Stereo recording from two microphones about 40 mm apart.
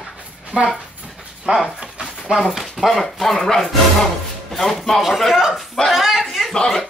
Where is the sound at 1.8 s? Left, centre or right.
Right.